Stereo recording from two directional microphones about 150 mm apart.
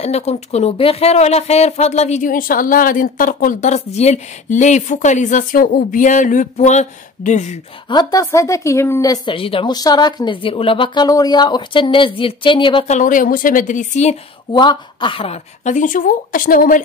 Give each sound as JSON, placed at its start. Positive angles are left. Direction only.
{"t": 0.0, "sound": "speech", "side_deg": 45}
{"t": 7.9, "sound": "speech", "side_deg": 25}
{"t": 12.8, "sound": "speech", "side_deg": 55}
{"t": 14.5, "sound": "a woman's voice", "side_deg": 30}
{"t": 15.7, "sound": "speech", "side_deg": 60}